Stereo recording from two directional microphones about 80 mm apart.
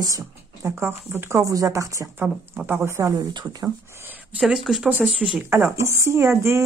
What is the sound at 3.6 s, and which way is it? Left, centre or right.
Speech, right.